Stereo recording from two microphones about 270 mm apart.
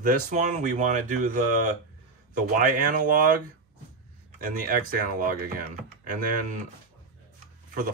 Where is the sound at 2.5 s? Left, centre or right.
Right.